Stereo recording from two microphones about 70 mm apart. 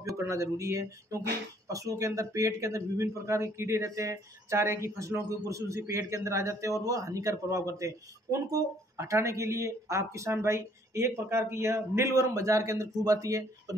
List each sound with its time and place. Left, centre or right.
0.1 s a man's voice: right